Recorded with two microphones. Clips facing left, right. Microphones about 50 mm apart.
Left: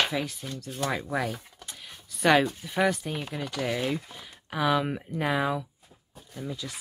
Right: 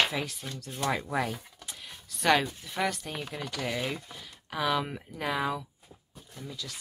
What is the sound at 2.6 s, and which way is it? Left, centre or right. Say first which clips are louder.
Speech: left 5 dB; centre.